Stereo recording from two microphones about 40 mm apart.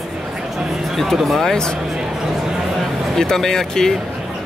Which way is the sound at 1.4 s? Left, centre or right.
Centre.